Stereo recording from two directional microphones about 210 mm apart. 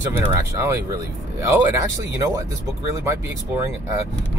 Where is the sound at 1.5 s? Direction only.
15° right (ahead or behind).